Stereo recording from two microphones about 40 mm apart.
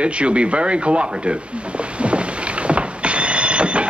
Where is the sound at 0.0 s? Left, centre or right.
Right.